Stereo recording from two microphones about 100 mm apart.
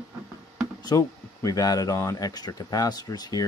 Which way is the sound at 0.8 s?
35° left (ahead or behind).